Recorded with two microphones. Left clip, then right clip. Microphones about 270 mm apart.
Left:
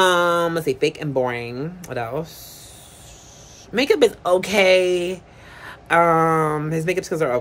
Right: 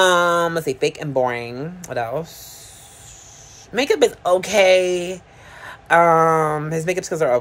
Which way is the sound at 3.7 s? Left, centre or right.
Centre.